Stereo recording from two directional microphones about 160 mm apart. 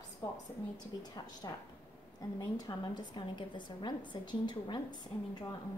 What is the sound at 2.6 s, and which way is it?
A woman's voice, 25° left (ahead or behind).